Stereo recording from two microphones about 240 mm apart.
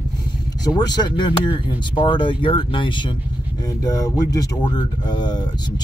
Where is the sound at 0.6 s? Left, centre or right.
Centre.